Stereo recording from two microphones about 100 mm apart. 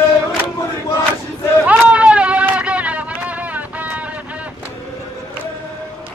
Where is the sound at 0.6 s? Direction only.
30° left (ahead or behind).